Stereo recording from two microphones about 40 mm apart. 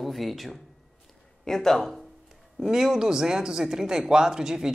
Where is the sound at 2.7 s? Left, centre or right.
Centre.